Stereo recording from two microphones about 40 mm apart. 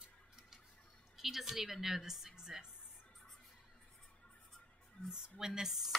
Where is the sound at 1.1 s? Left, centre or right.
Centre.